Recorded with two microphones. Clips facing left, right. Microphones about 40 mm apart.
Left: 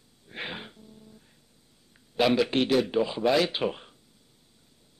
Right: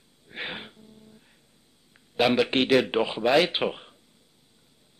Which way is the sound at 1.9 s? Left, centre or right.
Right.